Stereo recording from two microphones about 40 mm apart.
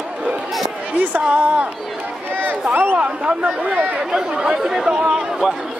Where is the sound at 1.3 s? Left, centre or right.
Right.